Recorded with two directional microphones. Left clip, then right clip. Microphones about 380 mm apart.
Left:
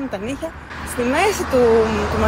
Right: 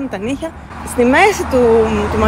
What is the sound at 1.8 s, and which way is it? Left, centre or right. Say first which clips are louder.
Speech: right 4 dB; centre.